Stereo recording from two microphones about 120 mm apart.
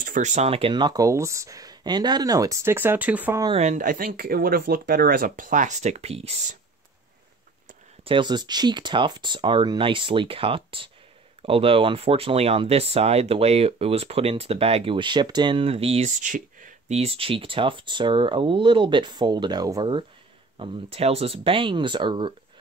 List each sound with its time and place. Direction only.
0.1 s speech: 80° right; by 3.3 s 15° right (ahead or behind)
3.5 s speech: 75° right (ahead or behind)
5.3 s speech: 90° right; by 6.6 s 70° right (ahead or behind)
8.0 s speech: 45° right (ahead or behind)
20.5 s speech: 50° right (ahead or behind)